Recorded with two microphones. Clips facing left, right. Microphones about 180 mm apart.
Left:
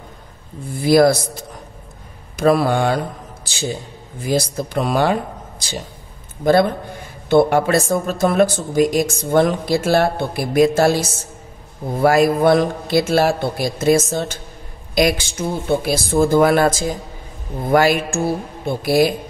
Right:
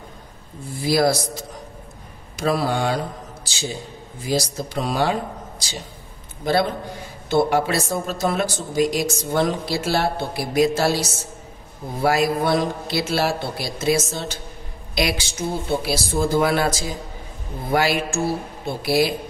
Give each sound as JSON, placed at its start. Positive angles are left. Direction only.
{"t": 0.8, "sound": "speech", "side_deg": 55}
{"t": 2.3, "sound": "speech", "side_deg": 55}
{"t": 4.2, "sound": "speech", "side_deg": 55}